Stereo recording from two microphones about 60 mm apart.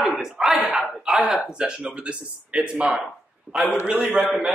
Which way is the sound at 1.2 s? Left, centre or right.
Centre.